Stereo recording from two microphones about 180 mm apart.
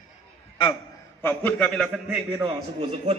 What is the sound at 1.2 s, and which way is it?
Speech, 10° left (ahead or behind).